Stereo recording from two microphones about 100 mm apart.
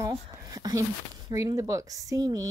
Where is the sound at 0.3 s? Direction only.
40° right (ahead or behind).